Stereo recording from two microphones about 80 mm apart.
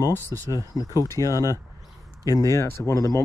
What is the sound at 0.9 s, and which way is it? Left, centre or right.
Speech, left.